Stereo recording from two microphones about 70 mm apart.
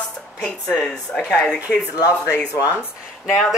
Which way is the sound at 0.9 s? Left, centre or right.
Centre.